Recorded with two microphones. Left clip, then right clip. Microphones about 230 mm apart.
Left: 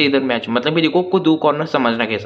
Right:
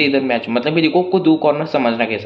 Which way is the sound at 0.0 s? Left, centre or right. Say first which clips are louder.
Even; centre.